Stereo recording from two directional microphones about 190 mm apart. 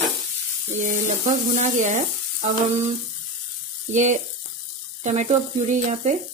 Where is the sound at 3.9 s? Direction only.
40° right (ahead or behind).